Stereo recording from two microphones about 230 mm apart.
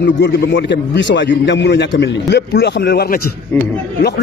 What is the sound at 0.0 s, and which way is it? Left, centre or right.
A man's voice, left.